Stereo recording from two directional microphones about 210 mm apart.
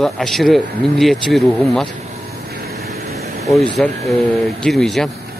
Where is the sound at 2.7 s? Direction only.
50° right (ahead or behind).